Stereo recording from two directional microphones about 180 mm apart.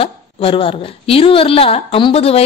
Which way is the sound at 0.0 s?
30° left (ahead or behind).